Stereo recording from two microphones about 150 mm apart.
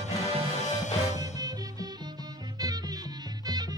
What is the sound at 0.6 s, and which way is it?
Music, 50° left (ahead or behind).